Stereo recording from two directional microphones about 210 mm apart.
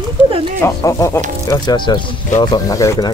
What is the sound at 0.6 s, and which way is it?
Speech, 15° left (ahead or behind).